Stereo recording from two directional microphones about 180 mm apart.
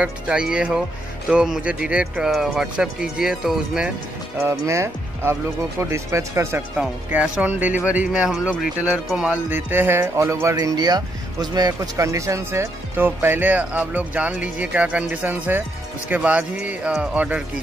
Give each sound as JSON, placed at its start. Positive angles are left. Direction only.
{"t": 0.0, "sound": "speech", "side_deg": -5}
{"t": 4.4, "sound": "speech", "side_deg": -15}